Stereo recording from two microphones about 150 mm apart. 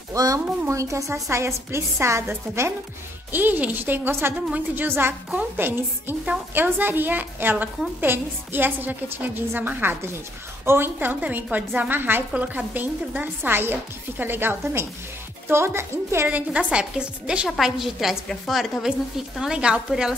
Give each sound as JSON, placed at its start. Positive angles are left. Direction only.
{"t": 0.1, "sound": "a woman's voice", "side_deg": -25}